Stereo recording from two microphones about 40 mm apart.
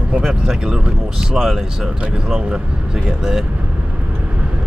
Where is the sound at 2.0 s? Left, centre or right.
Right.